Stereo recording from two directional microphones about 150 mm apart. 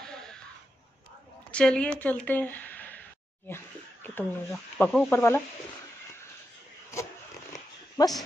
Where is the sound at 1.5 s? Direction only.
5° left (ahead or behind).